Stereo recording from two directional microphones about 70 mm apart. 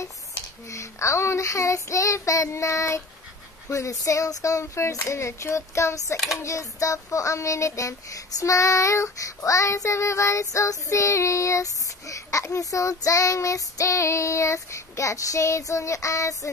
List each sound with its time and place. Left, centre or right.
0.3 s child singing: left
6.1 s speech: centre
6.4 s child singing: left